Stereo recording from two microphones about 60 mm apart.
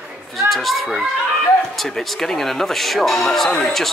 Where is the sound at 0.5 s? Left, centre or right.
Centre.